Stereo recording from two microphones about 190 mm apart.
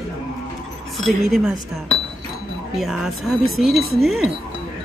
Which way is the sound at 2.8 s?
Centre (ahead or behind).